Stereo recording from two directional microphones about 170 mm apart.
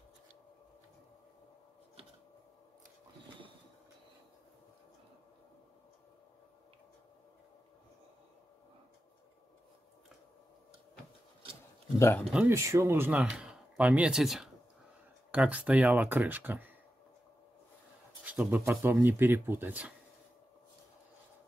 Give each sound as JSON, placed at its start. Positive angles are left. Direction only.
{"t": 12.0, "sound": "speech", "side_deg": 15}
{"t": 12.3, "sound": "speech", "side_deg": -5}
{"t": 12.5, "sound": "speech", "side_deg": -15}
{"t": 18.2, "sound": "speech", "side_deg": -10}